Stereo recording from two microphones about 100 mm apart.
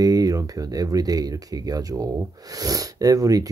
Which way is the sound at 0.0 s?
40° right (ahead or behind).